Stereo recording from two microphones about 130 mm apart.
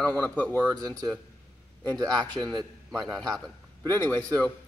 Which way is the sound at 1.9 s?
5° left (ahead or behind).